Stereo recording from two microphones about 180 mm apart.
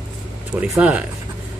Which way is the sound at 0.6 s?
5° right (ahead or behind).